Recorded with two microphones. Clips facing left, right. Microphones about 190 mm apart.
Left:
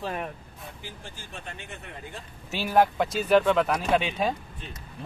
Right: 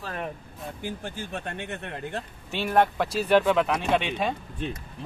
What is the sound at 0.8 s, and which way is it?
Speech, 60° right (ahead or behind).